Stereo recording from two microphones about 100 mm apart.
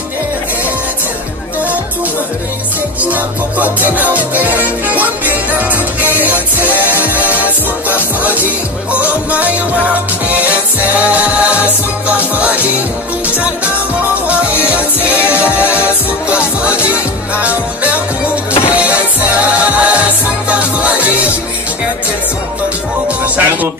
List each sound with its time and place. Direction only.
3.0 s music: 15° right (ahead or behind)
14.2 s music: 15° right (ahead or behind)
19.5 s music: 10° right (ahead or behind)
23.2 s music: 15° right (ahead or behind)